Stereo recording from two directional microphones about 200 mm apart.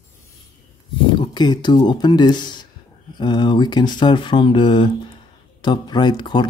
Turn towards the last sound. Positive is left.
turn(degrees=20)  # may be behind; listen again after turning